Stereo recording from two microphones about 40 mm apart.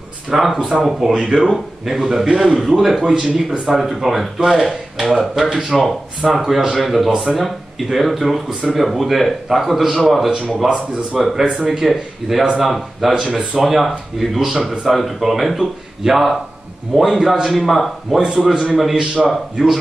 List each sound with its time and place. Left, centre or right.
0.3 s a man's voice: centre
1.1 s speech: right
1.9 s a man's voice: centre
13.1 s a man's voice: centre